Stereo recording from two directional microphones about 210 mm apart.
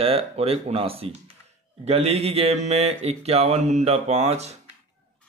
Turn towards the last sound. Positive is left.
turn(degrees=-30)  # may be behind; listen again after turning